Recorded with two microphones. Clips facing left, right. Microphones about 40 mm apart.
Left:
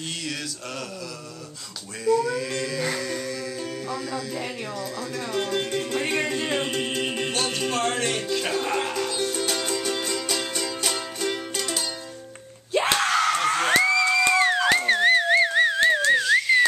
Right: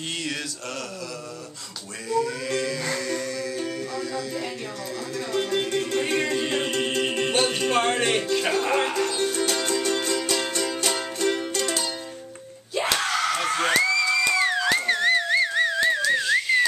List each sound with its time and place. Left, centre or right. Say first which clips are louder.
2.0 s music: left 3 dB; centre
7.3 s music: right 5 dB; centre
8.3 s speech: right 2 dB; centre
9.1 s music: right 2 dB; centre
12.9 s screaming: left 2 dB; left
13.5 s whoop: left 1 dB; centre
13.7 s music: left 2 dB; left
14.2 s a sound: left 2 dB; left
14.9 s theremin: left 4 dB; centre
16.3 s whistling: left 2 dB; centre